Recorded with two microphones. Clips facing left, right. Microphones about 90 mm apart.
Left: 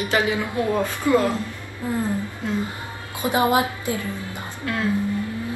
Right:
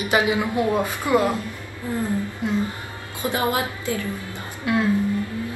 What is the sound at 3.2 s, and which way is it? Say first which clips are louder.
Speech: left 4 dB; 20° left (ahead or behind).